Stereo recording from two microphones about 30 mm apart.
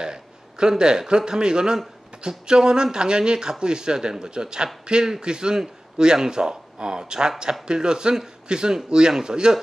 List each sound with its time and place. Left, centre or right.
0.0 s speech: right